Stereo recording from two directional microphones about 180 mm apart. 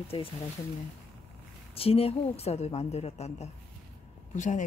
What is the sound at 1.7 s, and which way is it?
A woman's voice, 30° left (ahead or behind).